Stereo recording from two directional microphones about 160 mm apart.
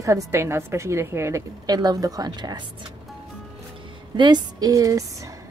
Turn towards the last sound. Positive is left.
turn(degrees=-20)  # may be behind; listen again after turning